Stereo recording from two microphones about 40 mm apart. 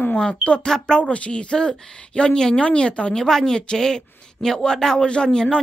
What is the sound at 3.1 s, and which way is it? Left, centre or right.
A woman's voice, centre.